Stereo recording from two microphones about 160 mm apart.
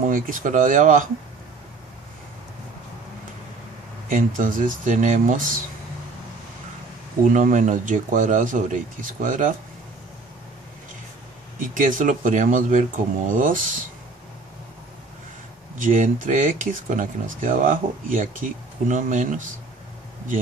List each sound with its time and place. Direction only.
0.0 s speech: 60° right (ahead or behind)
4.1 s speech: 55° right (ahead or behind)
7.2 s speech: 55° right (ahead or behind)
11.6 s speech: 55° right (ahead or behind)
15.8 s speech: 55° right (ahead or behind)